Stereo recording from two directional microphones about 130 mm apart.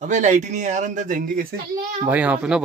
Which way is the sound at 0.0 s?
70° right (ahead or behind).